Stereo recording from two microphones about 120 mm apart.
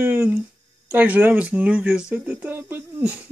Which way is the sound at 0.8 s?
15° right (ahead or behind).